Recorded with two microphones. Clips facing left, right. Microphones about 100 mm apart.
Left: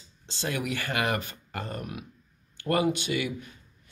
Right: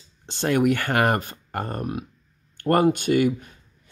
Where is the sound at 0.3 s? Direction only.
60° right (ahead or behind); by 2.0 s 40° right (ahead or behind).